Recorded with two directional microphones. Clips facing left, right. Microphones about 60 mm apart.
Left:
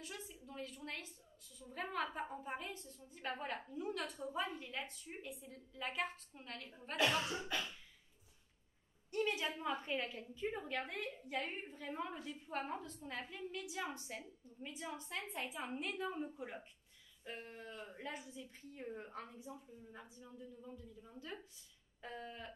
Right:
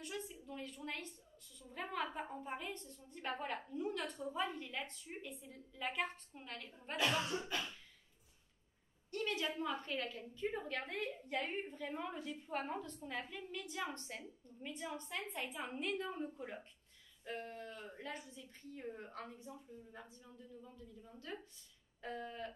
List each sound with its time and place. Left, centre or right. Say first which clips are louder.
0.0 s a woman's voice: right 4 dB; centre
9.1 s a woman's voice: left 1 dB; centre
22.0 s a woman's voice: right 4 dB; centre